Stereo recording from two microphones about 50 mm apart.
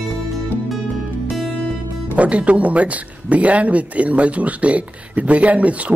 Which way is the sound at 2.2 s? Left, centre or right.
Right.